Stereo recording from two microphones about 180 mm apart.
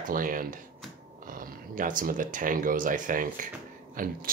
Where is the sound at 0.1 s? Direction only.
50° right (ahead or behind).